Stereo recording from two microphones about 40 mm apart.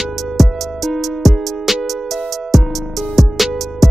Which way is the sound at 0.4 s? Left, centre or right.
Centre.